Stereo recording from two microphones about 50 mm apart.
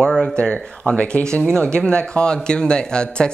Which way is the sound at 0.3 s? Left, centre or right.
Left.